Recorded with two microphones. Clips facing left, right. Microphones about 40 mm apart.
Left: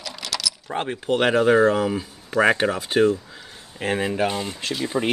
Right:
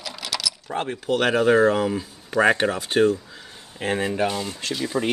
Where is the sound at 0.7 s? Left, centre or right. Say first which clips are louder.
Left 1 dB; centre.